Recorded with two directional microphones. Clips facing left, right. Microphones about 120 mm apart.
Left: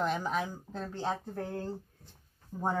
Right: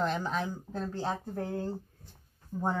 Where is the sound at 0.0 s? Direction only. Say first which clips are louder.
Even; 5° left (ahead or behind).